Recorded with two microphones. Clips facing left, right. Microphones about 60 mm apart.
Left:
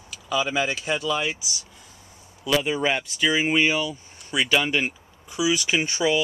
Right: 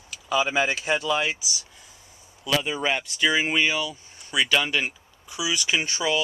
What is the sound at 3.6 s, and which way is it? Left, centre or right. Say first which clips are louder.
Speech: left 2 dB; centre.